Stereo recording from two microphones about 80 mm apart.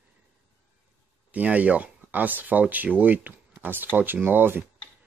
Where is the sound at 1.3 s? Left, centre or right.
Centre.